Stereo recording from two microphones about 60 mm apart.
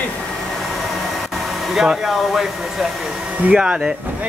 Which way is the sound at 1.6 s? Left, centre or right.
Centre.